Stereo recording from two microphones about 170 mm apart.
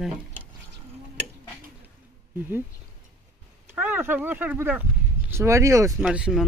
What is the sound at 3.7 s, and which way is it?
Speech, 10° right (ahead or behind).